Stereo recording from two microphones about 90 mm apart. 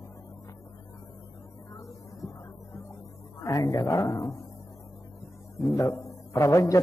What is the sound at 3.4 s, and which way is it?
Speech, 40° left (ahead or behind).